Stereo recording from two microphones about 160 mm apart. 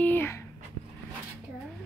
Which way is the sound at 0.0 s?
15° left (ahead or behind).